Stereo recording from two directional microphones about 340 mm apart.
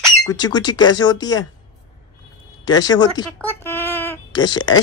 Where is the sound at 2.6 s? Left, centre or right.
Centre.